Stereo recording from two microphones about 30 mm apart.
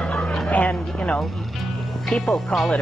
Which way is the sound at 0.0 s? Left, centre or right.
Left.